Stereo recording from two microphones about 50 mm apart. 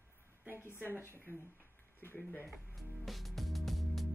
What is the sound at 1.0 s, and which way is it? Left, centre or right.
Speech, left.